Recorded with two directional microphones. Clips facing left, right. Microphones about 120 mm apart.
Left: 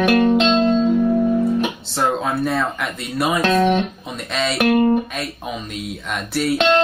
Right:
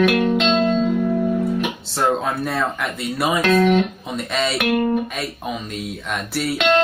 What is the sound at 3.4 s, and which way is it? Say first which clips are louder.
Speech: right 2 dB; 30° left (ahead or behind).